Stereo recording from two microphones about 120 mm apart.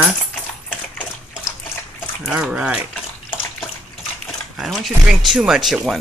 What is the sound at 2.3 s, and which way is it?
Speech, 5° right (ahead or behind).